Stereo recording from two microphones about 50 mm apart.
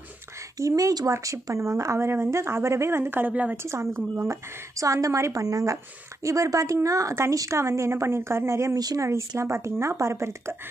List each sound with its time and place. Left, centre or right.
0.7 s speech: right
3.3 s a woman's voice: right
3.5 s speech: right
4.3 s speech: right